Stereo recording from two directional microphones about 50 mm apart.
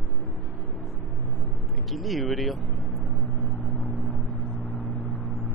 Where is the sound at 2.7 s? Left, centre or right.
Left.